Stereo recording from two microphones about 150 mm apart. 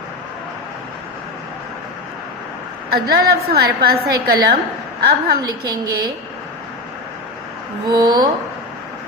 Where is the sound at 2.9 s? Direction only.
90° right.